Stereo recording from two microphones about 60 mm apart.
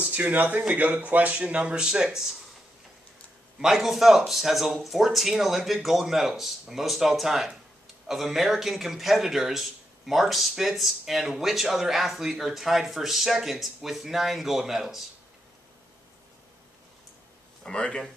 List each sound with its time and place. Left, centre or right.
0.0 s speech: right; by 2.4 s centre
3.5 s speech: centre
17.6 s speech: centre